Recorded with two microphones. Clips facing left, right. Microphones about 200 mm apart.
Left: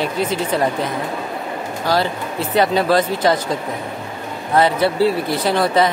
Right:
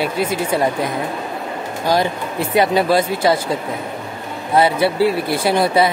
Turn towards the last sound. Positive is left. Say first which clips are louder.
# right 1 dB
turn(degrees=-10)  # may be behind; listen again after turning